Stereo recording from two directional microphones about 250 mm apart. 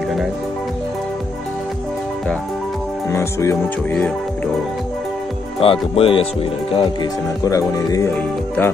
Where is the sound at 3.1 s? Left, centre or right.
Centre.